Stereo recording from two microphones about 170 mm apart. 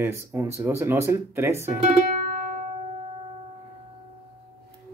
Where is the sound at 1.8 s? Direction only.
40° right (ahead or behind).